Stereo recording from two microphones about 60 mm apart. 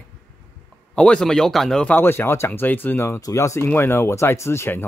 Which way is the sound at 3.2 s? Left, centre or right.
Left.